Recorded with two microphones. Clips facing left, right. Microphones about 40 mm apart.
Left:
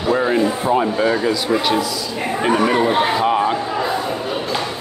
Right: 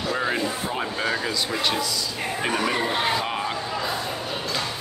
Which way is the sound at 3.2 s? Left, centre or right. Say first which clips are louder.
Left 11 dB; centre.